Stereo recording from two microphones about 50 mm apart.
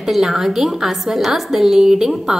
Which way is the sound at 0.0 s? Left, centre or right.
Centre.